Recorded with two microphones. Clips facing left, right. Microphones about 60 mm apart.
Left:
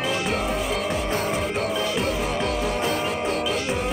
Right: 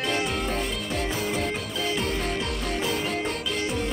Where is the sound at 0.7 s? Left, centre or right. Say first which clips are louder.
Left 6 dB; left.